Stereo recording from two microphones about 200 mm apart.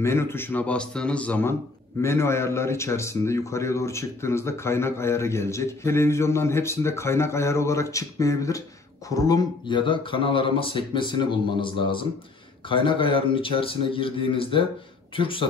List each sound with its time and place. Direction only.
0.0 s a man's voice: 10° left (ahead or behind)